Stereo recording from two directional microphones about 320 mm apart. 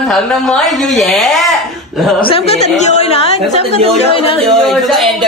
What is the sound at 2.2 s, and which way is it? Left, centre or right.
A woman's voice, centre.